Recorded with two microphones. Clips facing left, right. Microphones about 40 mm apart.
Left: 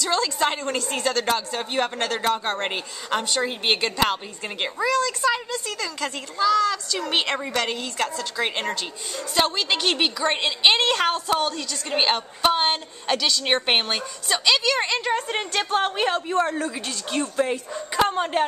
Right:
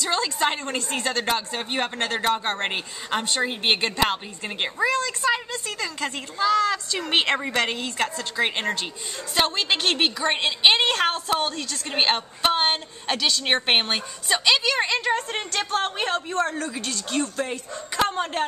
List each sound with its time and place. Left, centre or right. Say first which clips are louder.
0.0 s a woman's voice: left 1 dB; centre
4.8 s a child's voice: left 1 dB; right; by 18.4 s centre